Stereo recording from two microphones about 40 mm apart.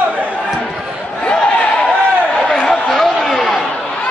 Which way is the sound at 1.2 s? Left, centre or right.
Left.